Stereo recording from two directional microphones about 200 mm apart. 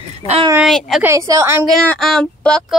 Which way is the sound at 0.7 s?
Centre (ahead or behind).